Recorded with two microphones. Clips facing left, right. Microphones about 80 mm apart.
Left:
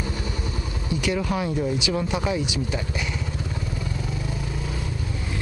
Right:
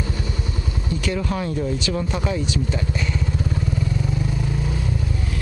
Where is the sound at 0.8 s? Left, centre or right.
Centre.